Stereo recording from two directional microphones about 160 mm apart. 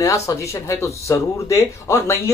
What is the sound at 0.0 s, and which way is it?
Speech, 20° left (ahead or behind).